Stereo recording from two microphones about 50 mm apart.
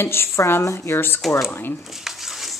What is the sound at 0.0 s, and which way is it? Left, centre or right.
A woman's voice, left.